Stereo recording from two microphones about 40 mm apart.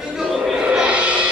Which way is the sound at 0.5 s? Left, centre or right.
Right.